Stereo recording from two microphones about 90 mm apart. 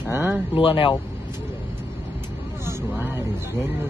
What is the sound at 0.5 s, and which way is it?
Speech, 80° left.